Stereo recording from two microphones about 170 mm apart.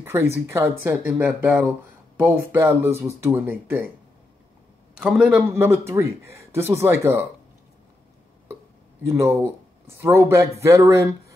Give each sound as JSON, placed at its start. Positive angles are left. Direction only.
{"t": 0.0, "sound": "a man's voice", "side_deg": -15}
{"t": 4.9, "sound": "a man's voice", "side_deg": -5}
{"t": 9.1, "sound": "a man's voice", "side_deg": -15}